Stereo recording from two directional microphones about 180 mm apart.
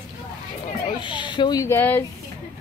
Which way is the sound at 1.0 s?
25° left (ahead or behind).